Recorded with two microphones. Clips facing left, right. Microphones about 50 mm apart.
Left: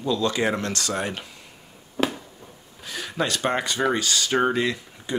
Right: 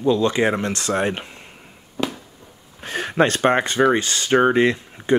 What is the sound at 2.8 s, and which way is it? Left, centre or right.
Speech, right.